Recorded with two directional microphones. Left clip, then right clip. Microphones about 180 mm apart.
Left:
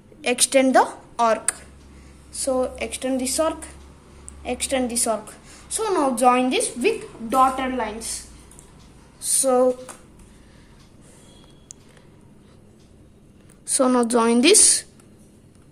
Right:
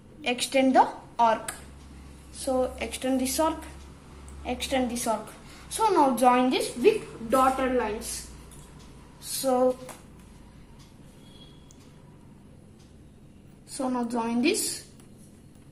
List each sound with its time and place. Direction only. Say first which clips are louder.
0.2 s a woman's voice: left 6 dB; 35° left (ahead or behind)
6.6 s a woman's voice: even; 60° left (ahead or behind)
9.3 s a sound: left 6 dB; 40° left (ahead or behind)
13.7 s a woman's voice: left 11 dB; 55° left (ahead or behind)